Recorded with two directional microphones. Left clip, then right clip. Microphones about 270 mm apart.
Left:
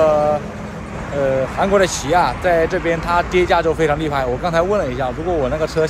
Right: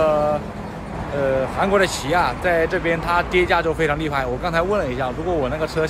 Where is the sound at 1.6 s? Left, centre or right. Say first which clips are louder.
Left 4 dB; centre.